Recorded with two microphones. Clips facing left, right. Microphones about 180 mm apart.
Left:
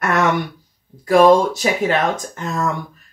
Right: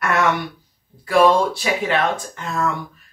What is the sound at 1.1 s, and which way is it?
Speech, 45° left (ahead or behind).